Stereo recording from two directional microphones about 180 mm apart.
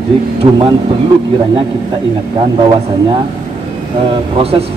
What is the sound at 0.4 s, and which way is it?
Speech, 25° right (ahead or behind).